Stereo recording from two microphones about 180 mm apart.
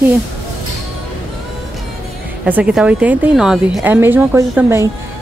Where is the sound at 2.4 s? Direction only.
5° right (ahead or behind).